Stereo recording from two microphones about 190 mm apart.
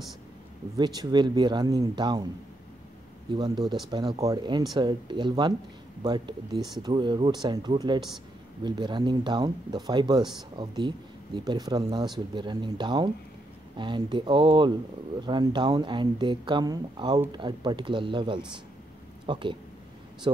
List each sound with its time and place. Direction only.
0.7 s speech: 20° right (ahead or behind)
3.3 s speech: 25° right (ahead or behind)